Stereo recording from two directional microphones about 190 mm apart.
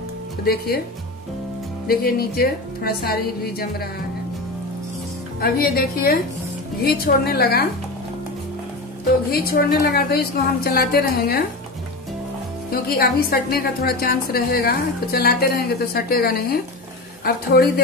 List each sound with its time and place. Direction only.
1.9 s a woman's voice: 55° left (ahead or behind)
5.4 s a woman's voice: 50° left (ahead or behind)
9.3 s a woman's voice: 50° left (ahead or behind)
12.7 s a woman's voice: 55° left (ahead or behind)